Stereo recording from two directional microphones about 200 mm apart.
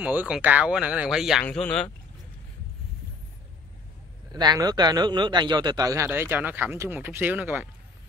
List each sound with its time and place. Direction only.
0.0 s speech: 10° right (ahead or behind)
4.3 s a man's voice: 20° right (ahead or behind)